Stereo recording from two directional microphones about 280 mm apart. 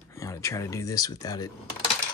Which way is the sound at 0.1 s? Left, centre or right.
Centre.